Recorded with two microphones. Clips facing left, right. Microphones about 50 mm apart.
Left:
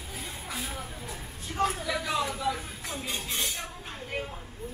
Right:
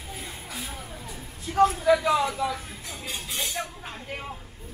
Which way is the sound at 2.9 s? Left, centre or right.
Centre.